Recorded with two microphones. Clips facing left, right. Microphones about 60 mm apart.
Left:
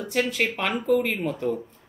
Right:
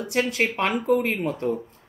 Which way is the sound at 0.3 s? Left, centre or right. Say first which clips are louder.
Right 2 dB; centre.